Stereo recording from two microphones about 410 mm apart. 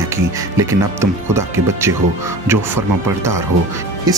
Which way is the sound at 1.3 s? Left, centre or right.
Centre.